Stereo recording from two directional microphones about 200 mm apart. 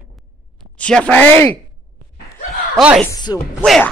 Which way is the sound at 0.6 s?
5° left (ahead or behind).